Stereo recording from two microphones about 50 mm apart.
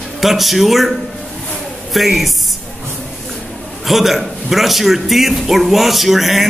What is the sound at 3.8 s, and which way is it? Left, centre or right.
A man's voice, centre.